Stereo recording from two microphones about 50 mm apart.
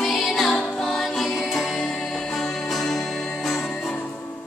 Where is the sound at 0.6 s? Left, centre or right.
Centre.